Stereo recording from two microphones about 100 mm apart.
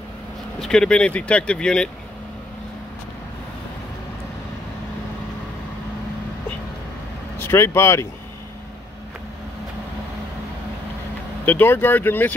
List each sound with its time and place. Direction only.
0.6 s speech: 5° left (ahead or behind)
7.3 s speech: 25° left (ahead or behind)
11.4 s speech: 20° left (ahead or behind)